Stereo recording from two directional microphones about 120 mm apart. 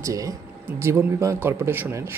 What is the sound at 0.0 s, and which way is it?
Speech, 30° right (ahead or behind).